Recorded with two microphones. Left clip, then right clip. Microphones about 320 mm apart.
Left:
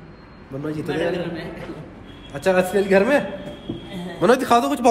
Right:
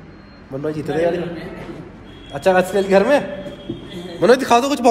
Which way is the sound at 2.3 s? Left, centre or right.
Centre.